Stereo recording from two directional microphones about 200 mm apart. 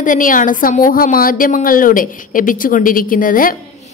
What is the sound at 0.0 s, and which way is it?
A woman's voice, 40° left (ahead or behind).